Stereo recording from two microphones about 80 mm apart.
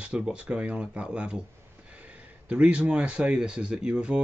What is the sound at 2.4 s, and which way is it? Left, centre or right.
Speech, centre.